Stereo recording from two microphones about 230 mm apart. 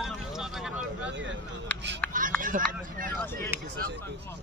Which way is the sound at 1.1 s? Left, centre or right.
Right.